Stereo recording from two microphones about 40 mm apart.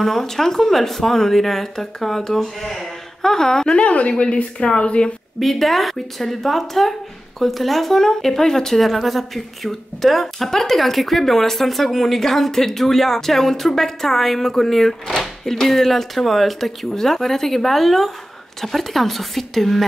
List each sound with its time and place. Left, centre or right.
0.0 s speech: centre
3.7 s a woman's voice: left
5.4 s speech: centre